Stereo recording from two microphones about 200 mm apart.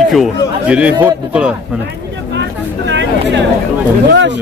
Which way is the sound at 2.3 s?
60° right (ahead or behind).